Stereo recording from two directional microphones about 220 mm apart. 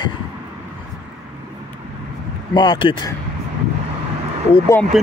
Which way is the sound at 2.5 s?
20° left (ahead or behind).